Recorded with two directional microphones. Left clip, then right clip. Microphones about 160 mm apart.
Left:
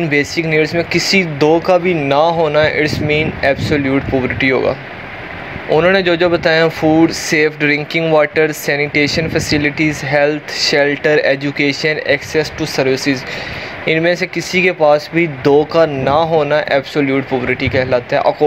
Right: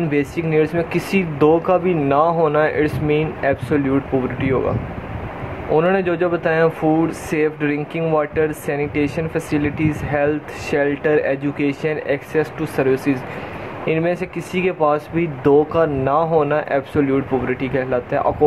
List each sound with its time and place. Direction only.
0.1 s speech: 20° left (ahead or behind)
5.8 s speech: 30° left (ahead or behind)
12.7 s speech: 15° left (ahead or behind)